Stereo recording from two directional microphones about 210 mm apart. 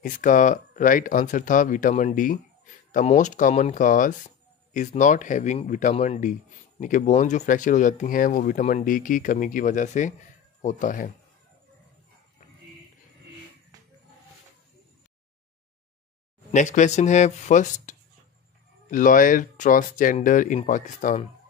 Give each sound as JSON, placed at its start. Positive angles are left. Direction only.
{"t": 0.0, "sound": "speech", "side_deg": 35}
{"t": 16.5, "sound": "speech", "side_deg": 35}